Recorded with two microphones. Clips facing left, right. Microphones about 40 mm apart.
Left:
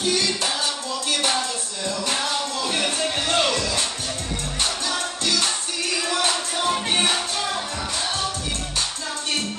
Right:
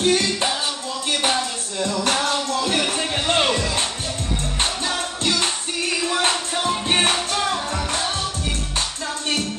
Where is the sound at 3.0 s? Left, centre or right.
Right.